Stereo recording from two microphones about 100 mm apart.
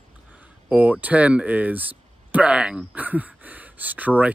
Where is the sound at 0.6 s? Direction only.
15° right (ahead or behind).